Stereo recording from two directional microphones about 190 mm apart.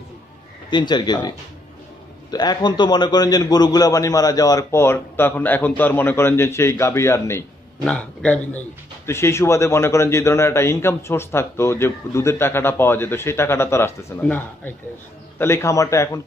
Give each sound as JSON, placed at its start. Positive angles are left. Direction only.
{"t": 0.7, "sound": "speech", "side_deg": 25}
{"t": 2.3, "sound": "a man's voice", "side_deg": 20}